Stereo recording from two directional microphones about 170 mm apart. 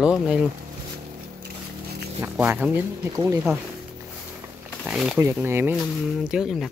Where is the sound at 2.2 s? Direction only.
10° right (ahead or behind).